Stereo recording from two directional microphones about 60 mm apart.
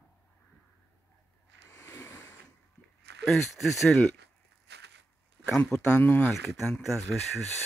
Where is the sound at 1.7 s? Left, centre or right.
Left.